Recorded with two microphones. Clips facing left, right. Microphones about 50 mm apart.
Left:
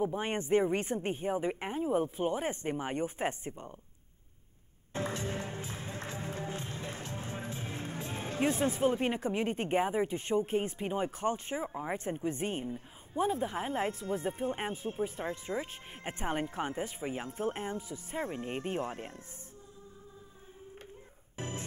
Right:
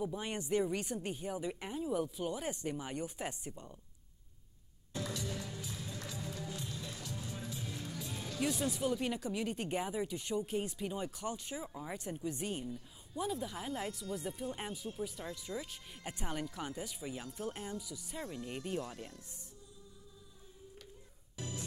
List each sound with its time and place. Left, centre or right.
0.0 s speech: left
4.9 s music: left
21.4 s music: left